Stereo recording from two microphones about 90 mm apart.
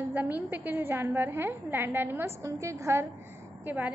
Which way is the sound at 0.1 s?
20° right (ahead or behind).